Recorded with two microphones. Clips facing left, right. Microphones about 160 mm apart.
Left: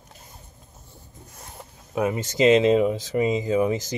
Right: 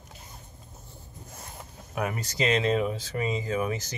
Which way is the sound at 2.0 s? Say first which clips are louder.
Left 7 dB; 25° left (ahead or behind).